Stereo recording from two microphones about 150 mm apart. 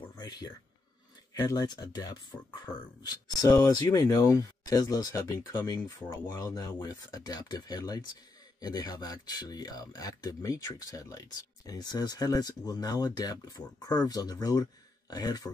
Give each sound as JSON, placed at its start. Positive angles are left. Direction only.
{"t": 0.2, "sound": "speech", "side_deg": 25}